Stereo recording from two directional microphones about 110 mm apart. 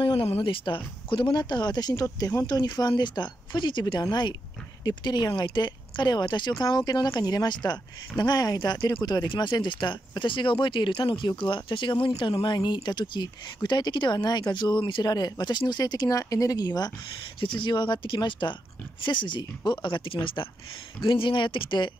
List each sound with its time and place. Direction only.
0.0 s speech: 50° left (ahead or behind); by 16.9 s 35° left (ahead or behind)
17.4 s speech: 50° left (ahead or behind)